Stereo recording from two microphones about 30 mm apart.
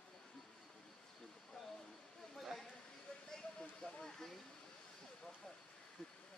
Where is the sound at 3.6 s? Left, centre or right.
Left.